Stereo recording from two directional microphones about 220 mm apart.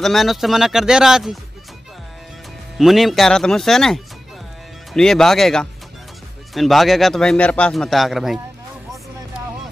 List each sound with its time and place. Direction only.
0.0 s a man's voice: centre (ahead or behind)
2.8 s a man's voice: centre (ahead or behind)